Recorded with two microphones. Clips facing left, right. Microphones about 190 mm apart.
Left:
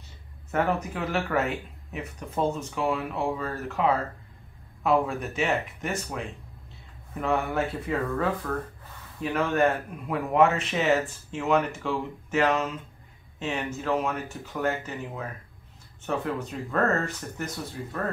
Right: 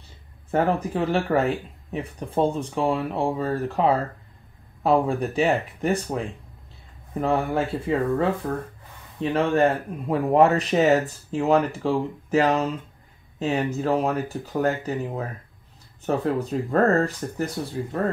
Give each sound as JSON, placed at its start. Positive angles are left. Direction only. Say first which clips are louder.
{"t": 0.5, "sound": "speech", "louder": "right 4 dB", "side_deg": -35}